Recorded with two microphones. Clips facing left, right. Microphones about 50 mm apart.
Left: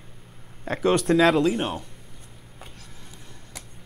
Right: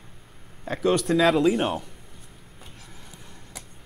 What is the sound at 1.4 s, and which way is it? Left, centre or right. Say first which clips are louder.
Speech: right 2 dB; centre.